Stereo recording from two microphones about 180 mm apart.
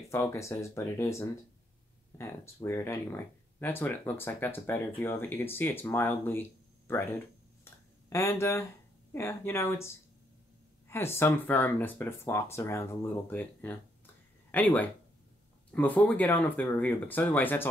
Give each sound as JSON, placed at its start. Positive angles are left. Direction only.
{"t": 0.1, "sound": "speech", "side_deg": 15}
{"t": 7.6, "sound": "a sound", "side_deg": 15}
{"t": 9.1, "sound": "speech", "side_deg": 15}